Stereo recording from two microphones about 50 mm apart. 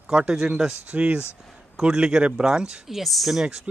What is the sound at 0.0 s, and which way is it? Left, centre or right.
Speech, right.